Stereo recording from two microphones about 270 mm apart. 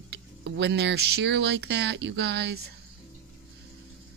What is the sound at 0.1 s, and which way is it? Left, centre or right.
Speech, right.